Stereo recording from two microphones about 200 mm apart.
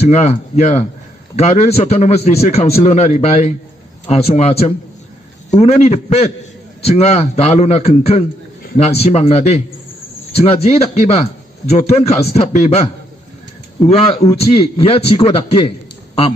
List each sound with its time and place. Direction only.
0.0 s a man's voice: 35° left (ahead or behind)